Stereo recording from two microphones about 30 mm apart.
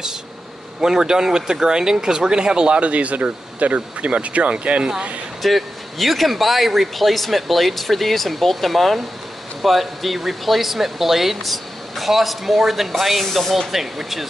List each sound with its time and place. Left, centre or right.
0.7 s speech: right
2.8 s speech: right
5.4 s speech: centre